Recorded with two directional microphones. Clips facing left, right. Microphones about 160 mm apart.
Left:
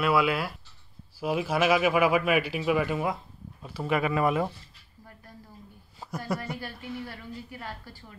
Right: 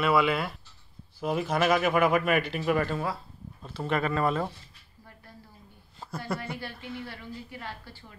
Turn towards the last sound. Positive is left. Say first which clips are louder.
# left 1 dB
turn(degrees=10)  # may be behind; listen again after turning